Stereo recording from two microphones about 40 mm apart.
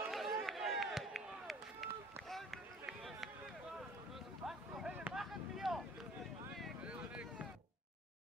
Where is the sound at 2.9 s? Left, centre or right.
Centre.